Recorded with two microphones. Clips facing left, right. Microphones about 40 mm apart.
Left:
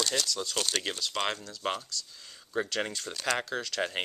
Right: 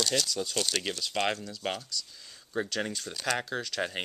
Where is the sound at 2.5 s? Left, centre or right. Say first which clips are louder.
Left 1 dB; centre.